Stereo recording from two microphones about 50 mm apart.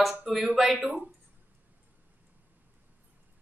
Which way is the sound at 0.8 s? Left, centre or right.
Right.